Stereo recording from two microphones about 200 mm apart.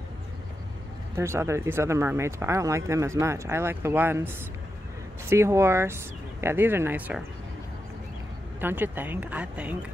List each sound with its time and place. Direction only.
1.1 s speech: 15° right (ahead or behind)
5.3 s speech: 15° right (ahead or behind)
8.5 s speech: 10° right (ahead or behind)